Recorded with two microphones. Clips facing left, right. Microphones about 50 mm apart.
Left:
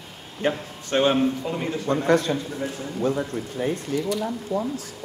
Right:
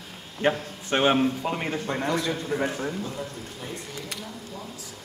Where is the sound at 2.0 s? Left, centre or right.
Left.